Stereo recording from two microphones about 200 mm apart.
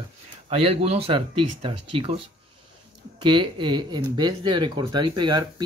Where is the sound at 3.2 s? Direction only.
25° right (ahead or behind).